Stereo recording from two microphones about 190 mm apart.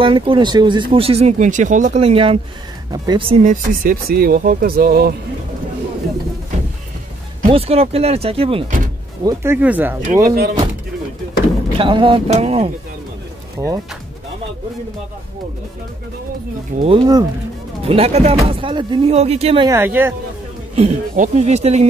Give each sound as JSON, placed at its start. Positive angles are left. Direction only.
{"t": 0.0, "sound": "speech", "side_deg": -25}
{"t": 3.4, "sound": "speech", "side_deg": -50}
{"t": 7.4, "sound": "speech", "side_deg": -30}
{"t": 8.6, "sound": "speech", "side_deg": -40}
{"t": 9.2, "sound": "speech", "side_deg": -15}
{"t": 10.2, "sound": "speech", "side_deg": -55}
{"t": 11.8, "sound": "speech", "side_deg": -25}
{"t": 13.6, "sound": "speech", "side_deg": -15}
{"t": 16.8, "sound": "speech", "side_deg": -25}
{"t": 19.7, "sound": "speech", "side_deg": -10}
{"t": 20.7, "sound": "speech", "side_deg": -35}